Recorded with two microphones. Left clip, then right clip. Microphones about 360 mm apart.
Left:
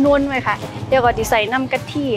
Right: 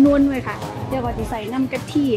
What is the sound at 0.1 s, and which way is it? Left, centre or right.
Speech, left.